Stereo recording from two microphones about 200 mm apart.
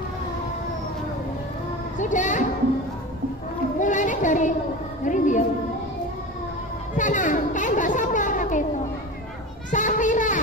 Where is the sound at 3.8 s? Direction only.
40° left (ahead or behind).